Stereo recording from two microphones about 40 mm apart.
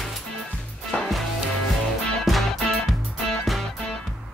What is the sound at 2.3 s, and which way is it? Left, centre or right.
Music, centre.